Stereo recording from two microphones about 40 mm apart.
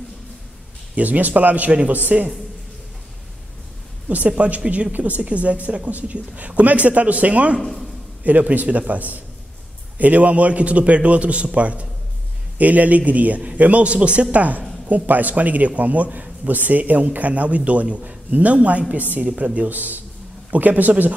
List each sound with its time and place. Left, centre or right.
0.9 s a man's voice: right
2.1 s a man's voice: right
4.3 s a man's voice: right
14.9 s a man's voice: right